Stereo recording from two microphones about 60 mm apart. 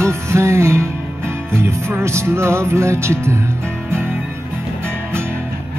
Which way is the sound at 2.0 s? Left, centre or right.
Right.